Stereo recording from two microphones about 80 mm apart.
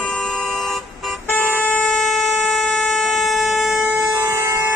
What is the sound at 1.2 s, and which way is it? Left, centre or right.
Music, left.